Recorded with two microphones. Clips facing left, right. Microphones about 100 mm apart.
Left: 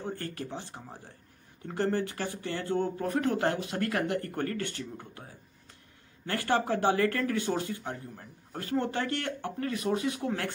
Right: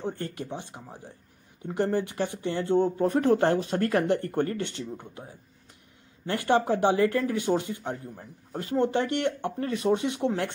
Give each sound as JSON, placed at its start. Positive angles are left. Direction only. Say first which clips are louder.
{"t": 0.0, "sound": "speech", "louder": "right 3 dB", "side_deg": -25}
{"t": 6.2, "sound": "speech", "louder": "right 4 dB", "side_deg": -20}